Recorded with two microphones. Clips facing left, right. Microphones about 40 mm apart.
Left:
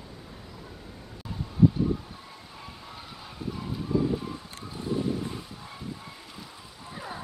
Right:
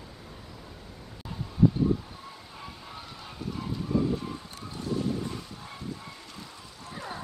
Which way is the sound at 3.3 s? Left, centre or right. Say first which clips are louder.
Even; centre.